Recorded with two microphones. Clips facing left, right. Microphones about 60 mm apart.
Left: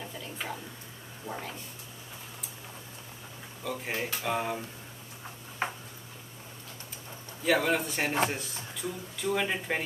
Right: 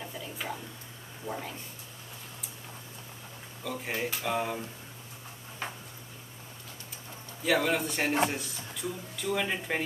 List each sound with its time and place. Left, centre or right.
0.0 s a sound: centre
1.2 s speech: centre
3.6 s speech: centre
5.6 s tick-tock: left
7.4 s speech: centre